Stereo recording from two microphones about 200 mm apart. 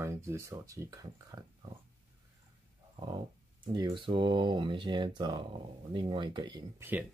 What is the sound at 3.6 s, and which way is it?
Speech, 20° right (ahead or behind).